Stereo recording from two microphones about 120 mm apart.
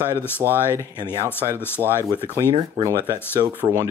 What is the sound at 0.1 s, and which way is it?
Speech, 20° left (ahead or behind).